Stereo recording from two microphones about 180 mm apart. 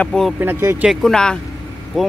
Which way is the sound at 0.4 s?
10° right (ahead or behind).